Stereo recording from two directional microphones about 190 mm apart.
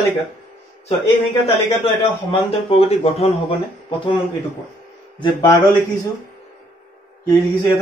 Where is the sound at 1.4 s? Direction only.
25° left (ahead or behind).